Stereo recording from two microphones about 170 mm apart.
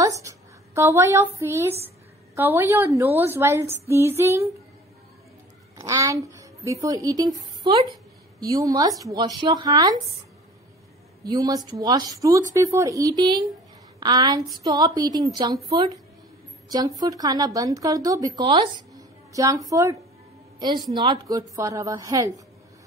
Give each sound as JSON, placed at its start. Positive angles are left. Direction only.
{"t": 0.0, "sound": "a woman's voice", "side_deg": -20}
{"t": 5.8, "sound": "speech", "side_deg": -20}
{"t": 8.4, "sound": "speech", "side_deg": -20}
{"t": 11.2, "sound": "a woman's voice", "side_deg": -20}